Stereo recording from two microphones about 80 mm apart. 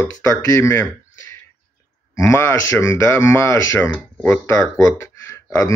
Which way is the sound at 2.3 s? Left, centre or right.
Left.